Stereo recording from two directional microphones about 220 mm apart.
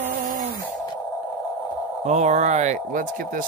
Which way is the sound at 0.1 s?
35° right (ahead or behind).